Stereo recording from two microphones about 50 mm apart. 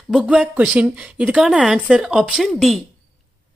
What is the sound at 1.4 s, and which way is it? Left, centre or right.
A woman's voice, centre.